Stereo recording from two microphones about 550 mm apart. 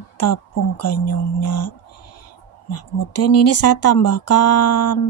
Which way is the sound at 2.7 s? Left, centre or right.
Left.